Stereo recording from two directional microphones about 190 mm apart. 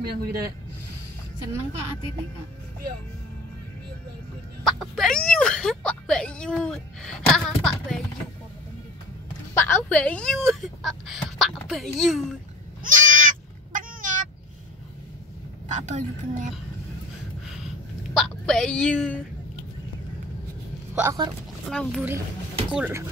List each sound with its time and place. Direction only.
0.0 s speech: 55° right (ahead or behind)
4.6 s speech: centre (ahead or behind)
9.5 s speech: 15° left (ahead or behind)
12.9 s goat: 45° right (ahead or behind)
13.7 s a sound: 45° right (ahead or behind)
15.7 s a woman's voice: 40° right (ahead or behind)
18.1 s a woman's voice: 5° left (ahead or behind)
20.9 s speech: 15° right (ahead or behind)
21.6 s speech: centre (ahead or behind)